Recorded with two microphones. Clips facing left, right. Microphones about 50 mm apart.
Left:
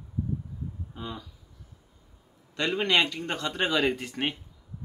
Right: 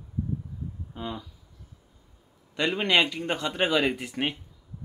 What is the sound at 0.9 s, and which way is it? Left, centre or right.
Speech, centre.